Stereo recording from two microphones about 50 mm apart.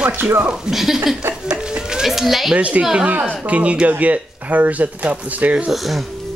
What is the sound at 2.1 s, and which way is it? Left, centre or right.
Speech, centre.